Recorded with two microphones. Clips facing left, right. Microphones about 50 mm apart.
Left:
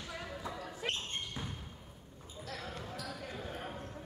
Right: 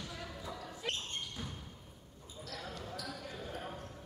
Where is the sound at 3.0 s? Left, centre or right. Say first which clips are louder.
Left 1 dB; centre.